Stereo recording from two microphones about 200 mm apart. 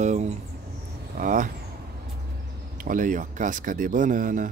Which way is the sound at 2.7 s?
40° right (ahead or behind).